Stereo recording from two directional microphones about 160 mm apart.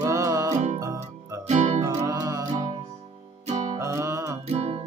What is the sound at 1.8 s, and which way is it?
Music, 20° right (ahead or behind).